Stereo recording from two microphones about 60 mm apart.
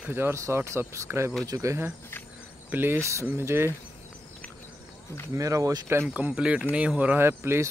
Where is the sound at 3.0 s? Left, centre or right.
Right.